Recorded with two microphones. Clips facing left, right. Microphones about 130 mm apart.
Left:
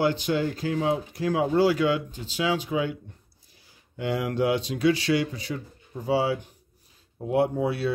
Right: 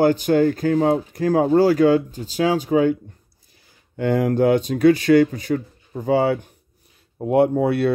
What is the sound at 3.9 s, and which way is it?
Speech, 50° right (ahead or behind).